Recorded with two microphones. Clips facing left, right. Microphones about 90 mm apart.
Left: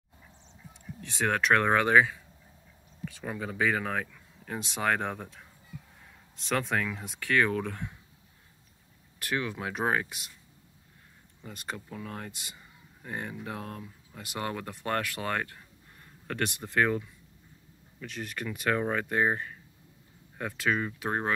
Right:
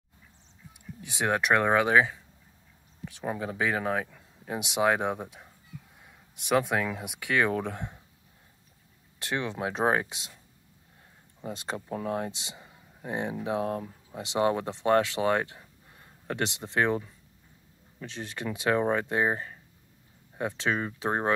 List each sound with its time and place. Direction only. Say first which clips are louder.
1.0 s speech: right 1 dB; 15° right (ahead or behind)
3.2 s speech: right 1 dB; 20° right (ahead or behind)
9.2 s speech: right 2 dB; 25° right (ahead or behind)
11.4 s speech: right 5 dB; 25° right (ahead or behind)
18.0 s speech: right 1 dB; 25° right (ahead or behind)